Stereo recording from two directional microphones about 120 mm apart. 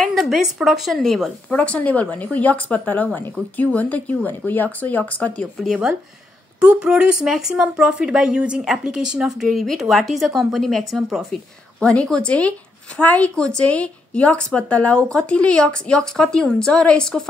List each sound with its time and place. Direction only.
0.0 s a woman's voice: centre (ahead or behind)